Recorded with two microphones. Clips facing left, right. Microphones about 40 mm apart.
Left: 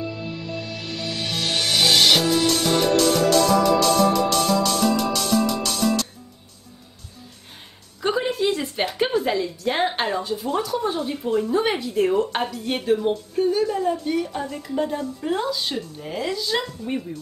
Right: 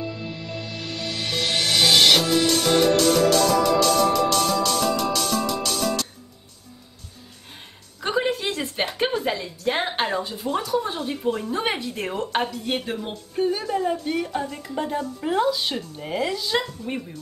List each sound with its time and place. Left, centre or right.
0.0 s music: centre
8.0 s a sound: centre
8.9 s speech: centre
16.3 s speech: centre